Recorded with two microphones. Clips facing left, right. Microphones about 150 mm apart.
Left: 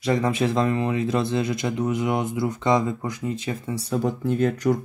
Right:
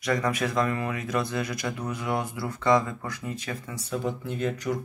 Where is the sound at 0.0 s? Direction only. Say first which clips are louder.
Left 4 dB; 25° left (ahead or behind).